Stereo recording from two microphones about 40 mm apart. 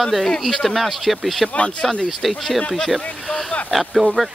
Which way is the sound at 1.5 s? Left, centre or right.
Left.